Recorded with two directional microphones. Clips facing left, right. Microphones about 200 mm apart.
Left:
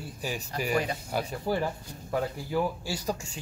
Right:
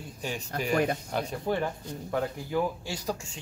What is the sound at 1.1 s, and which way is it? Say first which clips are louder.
Speech: even; 5° left (ahead or behind).